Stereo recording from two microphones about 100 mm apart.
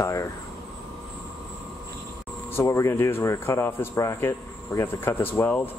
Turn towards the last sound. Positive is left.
turn(degrees=25)  # may be behind; listen again after turning